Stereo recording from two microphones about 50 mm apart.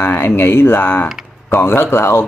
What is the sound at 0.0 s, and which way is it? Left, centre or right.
Speech, left.